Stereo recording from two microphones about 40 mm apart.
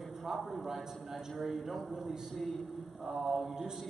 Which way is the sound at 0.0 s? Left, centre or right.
Centre.